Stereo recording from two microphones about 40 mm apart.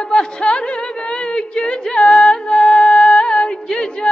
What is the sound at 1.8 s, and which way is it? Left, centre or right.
Music, centre.